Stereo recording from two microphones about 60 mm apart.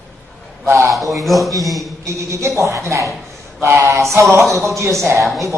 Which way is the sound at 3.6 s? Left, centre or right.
Right.